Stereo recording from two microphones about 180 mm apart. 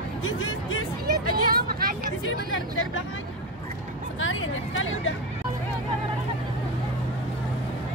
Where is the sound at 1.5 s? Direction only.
55° right (ahead or behind).